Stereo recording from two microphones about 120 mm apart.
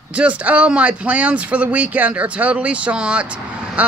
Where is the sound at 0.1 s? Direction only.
10° right (ahead or behind).